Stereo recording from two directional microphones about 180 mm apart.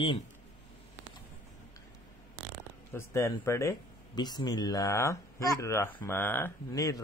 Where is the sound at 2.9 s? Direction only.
15° left (ahead or behind).